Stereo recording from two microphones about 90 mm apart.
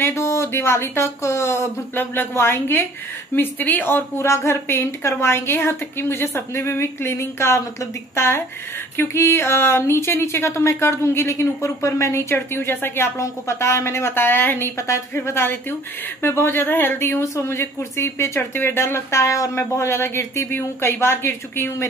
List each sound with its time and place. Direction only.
0.0 s speech: 30° left (ahead or behind)
17.2 s speech: 35° left (ahead or behind)